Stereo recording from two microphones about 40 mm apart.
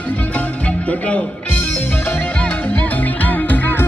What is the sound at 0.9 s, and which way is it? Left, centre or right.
Music, left.